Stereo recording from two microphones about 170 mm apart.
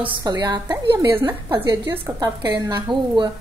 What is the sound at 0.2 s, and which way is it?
A woman's voice, 25° right (ahead or behind).